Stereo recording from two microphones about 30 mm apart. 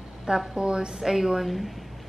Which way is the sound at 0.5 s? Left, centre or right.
Right.